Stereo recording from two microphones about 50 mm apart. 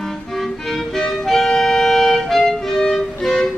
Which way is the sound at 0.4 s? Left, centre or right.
Centre.